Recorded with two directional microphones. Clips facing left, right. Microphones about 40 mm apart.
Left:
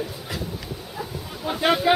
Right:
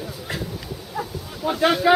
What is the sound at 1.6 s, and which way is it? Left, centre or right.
Speech, centre.